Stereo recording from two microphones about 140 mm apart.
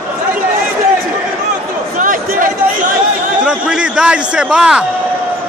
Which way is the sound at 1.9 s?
75° right (ahead or behind).